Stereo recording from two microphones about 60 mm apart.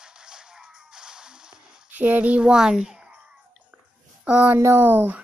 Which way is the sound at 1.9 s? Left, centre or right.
Right.